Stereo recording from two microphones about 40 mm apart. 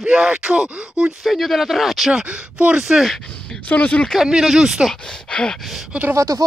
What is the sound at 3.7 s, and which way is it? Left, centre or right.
Speech, left.